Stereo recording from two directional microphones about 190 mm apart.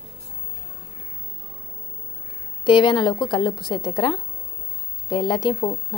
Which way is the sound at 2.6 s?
25° left (ahead or behind).